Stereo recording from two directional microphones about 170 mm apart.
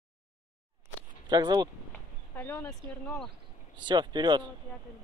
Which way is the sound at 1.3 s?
25° right (ahead or behind).